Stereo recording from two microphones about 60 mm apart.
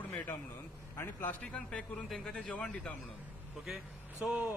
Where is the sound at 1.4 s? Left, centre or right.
Left.